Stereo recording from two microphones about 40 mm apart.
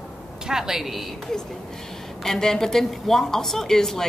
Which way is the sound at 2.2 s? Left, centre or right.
Centre.